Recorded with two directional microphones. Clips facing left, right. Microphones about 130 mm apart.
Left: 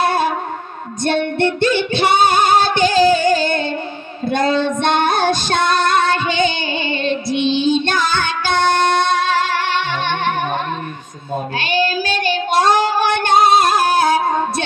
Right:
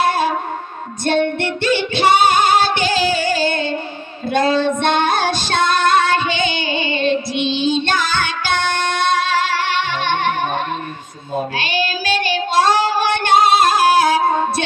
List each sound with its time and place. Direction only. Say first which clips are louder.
1.4 s female singing: left 3 dB; 50° left (ahead or behind)
11.5 s child singing: left 3 dB; 50° left (ahead or behind)